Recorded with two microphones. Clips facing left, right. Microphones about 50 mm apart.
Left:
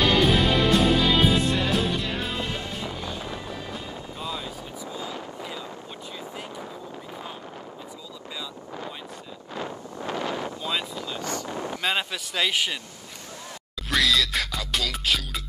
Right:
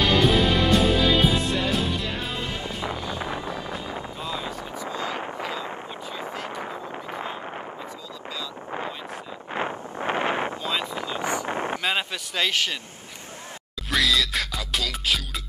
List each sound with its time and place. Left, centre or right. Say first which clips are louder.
0.0 s music: right 1 dB; centre
2.6 s music: right 3 dB; right
3.4 s music: right 3 dB; centre
4.2 s vehicle: even; centre
4.8 s wind noise: right 5 dB; right
9.5 s wind noise: right 5 dB; right
11.0 s vehicle: right 4 dB; right
11.4 s a sound: right 4 dB; right
11.8 s a sound: even; centre
12.4 s speech: right 1 dB; centre
13.8 s music: even; centre